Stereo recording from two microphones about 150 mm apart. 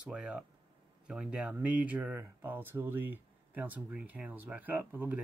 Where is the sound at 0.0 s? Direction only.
10° right (ahead or behind).